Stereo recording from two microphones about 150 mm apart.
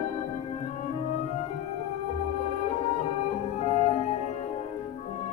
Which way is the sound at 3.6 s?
50° left (ahead or behind).